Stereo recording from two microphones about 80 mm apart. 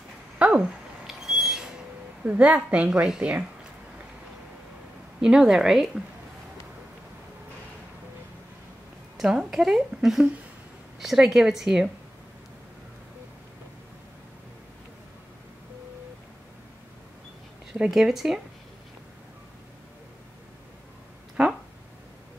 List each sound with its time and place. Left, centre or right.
0.4 s a sound: centre
1.0 s a sound: centre
2.2 s a woman's voice: centre
5.2 s a woman's voice: centre
9.1 s speech: centre
17.7 s speech: centre